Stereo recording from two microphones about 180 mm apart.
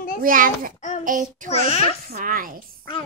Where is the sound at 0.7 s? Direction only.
40° left (ahead or behind).